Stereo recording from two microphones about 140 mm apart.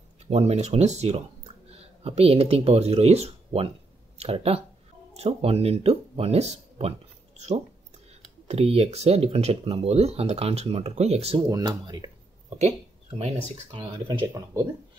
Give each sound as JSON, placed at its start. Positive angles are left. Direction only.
{"t": 0.3, "sound": "speech", "side_deg": -50}
{"t": 11.4, "sound": "speech", "side_deg": -25}
{"t": 13.2, "sound": "speech", "side_deg": -50}
{"t": 13.9, "sound": "speech", "side_deg": -35}
{"t": 14.3, "sound": "speech", "side_deg": -25}